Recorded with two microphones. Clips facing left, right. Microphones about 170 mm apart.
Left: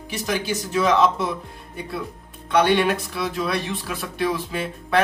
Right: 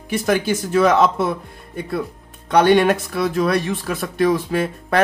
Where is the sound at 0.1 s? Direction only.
50° right (ahead or behind).